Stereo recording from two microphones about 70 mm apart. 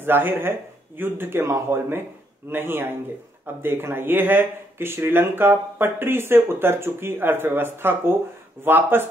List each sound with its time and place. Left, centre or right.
0.0 s speech: right